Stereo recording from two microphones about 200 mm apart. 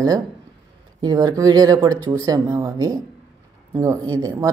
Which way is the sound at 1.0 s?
20° right (ahead or behind).